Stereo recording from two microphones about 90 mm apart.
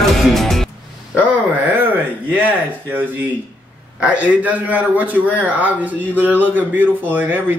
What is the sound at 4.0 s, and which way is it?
A man's voice, 15° right (ahead or behind).